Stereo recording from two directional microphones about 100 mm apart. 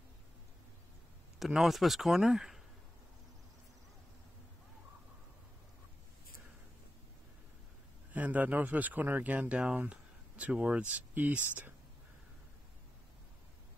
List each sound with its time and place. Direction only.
1.4 s speech: centre (ahead or behind)
8.1 s speech: 15° right (ahead or behind)